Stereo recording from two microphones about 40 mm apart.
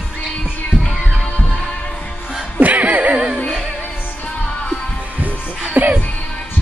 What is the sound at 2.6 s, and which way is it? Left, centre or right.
Music, right.